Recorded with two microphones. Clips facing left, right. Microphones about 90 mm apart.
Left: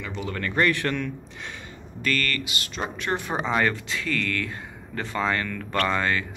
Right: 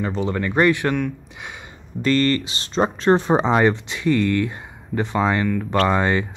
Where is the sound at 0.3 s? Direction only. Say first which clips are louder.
Right 5 dB; 20° right (ahead or behind).